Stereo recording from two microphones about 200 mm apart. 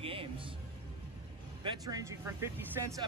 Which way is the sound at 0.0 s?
25° right (ahead or behind).